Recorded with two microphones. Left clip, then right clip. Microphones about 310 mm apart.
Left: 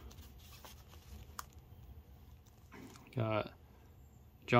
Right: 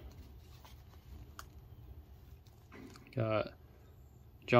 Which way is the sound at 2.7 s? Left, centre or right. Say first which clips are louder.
Right 2 dB; centre.